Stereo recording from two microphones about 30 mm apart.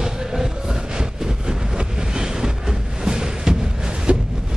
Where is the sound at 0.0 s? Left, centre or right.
Centre.